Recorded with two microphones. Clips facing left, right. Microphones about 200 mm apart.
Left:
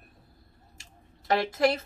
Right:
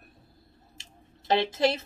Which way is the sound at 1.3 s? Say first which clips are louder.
Even; 25° right (ahead or behind).